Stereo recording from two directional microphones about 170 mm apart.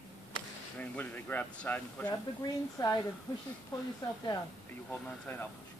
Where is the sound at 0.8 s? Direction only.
10° left (ahead or behind).